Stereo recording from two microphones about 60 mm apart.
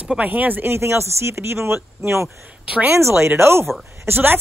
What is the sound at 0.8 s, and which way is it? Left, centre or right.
Speech, right.